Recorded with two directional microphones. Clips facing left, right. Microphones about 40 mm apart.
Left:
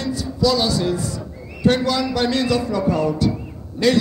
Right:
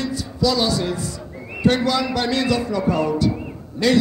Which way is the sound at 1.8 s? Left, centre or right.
Right.